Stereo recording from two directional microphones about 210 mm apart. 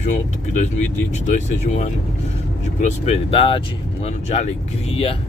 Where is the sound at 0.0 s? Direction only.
35° left (ahead or behind).